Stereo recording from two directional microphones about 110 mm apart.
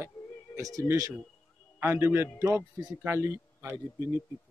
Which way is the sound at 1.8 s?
20° right (ahead or behind).